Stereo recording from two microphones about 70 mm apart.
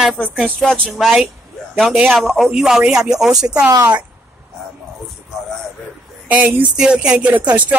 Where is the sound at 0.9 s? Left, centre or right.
Centre.